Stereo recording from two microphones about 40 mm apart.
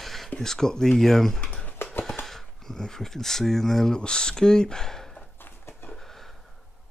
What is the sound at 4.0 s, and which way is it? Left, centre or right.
Speech, centre.